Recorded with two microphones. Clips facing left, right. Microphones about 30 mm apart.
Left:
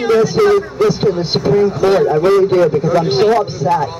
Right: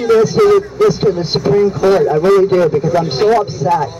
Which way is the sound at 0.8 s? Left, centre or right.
Centre.